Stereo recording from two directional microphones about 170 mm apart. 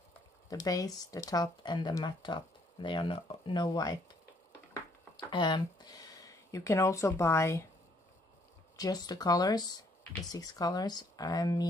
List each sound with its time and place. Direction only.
0.5 s speech: 20° left (ahead or behind)
5.1 s speech: 25° left (ahead or behind)
8.7 s speech: 20° left (ahead or behind)